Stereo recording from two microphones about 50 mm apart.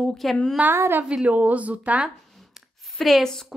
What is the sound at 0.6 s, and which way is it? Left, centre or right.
Speech, right.